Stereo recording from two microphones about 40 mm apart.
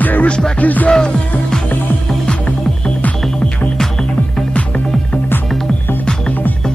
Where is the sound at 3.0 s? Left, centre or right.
Left.